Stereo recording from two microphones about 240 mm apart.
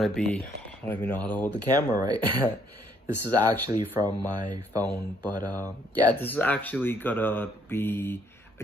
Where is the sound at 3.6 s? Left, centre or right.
Centre.